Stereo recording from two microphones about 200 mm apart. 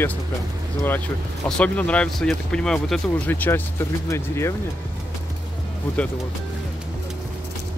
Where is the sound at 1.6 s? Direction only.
5° left (ahead or behind).